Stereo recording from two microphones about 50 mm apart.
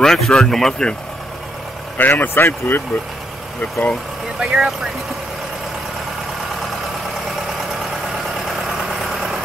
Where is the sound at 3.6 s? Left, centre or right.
Centre.